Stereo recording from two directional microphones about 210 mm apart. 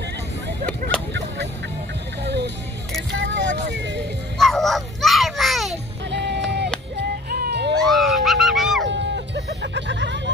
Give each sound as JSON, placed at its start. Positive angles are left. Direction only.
{"t": 2.2, "sound": "a sound", "side_deg": -55}
{"t": 3.1, "sound": "vehicle", "side_deg": -55}
{"t": 4.4, "sound": "music", "side_deg": 0}
{"t": 6.0, "sound": "music", "side_deg": -55}
{"t": 7.8, "sound": "a sound", "side_deg": 0}
{"t": 8.8, "sound": "music", "side_deg": -55}